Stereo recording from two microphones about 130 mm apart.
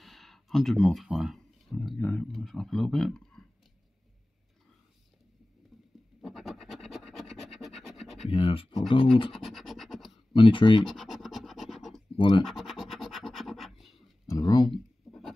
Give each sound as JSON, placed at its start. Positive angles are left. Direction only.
{"t": 0.0, "sound": "speech", "side_deg": 0}
{"t": 6.2, "sound": "scratch", "side_deg": 0}
{"t": 8.3, "sound": "speech", "side_deg": 45}
{"t": 9.3, "sound": "scratch", "side_deg": 0}
{"t": 10.3, "sound": "speech", "side_deg": 40}
{"t": 10.9, "sound": "scratch", "side_deg": 0}
{"t": 14.3, "sound": "a sound", "side_deg": 30}
{"t": 15.0, "sound": "a sound", "side_deg": 0}